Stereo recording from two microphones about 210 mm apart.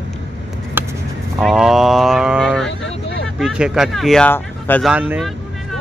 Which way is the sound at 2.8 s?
60° left (ahead or behind).